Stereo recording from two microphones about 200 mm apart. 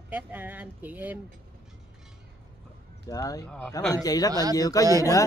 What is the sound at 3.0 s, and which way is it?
Speech, 15° left (ahead or behind).